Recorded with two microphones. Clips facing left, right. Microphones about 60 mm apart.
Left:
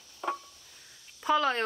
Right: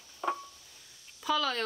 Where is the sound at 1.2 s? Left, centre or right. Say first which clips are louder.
Left 4 dB; left.